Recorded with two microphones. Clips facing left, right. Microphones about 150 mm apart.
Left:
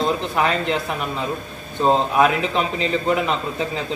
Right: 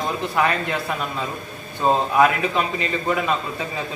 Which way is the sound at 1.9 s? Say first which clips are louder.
Even; 20° left (ahead or behind).